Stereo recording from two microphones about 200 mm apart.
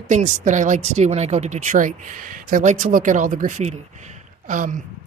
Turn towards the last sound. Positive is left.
turn(degrees=-40)  # may be behind; listen again after turning